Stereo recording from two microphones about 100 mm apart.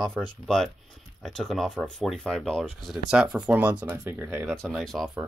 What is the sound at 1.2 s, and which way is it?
Speech, 5° left (ahead or behind).